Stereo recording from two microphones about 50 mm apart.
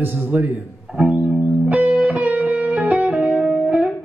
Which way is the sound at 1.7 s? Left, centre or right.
Right.